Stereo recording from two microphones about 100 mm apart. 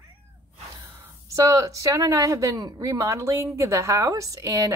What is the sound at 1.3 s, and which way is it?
A woman's voice, 35° right (ahead or behind).